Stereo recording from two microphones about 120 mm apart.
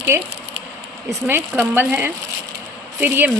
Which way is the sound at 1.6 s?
15° right (ahead or behind).